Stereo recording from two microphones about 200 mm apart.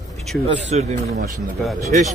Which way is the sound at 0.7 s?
35° right (ahead or behind).